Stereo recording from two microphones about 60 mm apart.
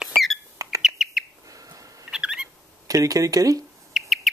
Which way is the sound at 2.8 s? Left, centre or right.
Right.